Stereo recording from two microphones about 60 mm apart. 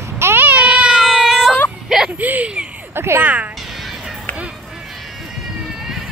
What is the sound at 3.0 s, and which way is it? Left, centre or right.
Speech, right.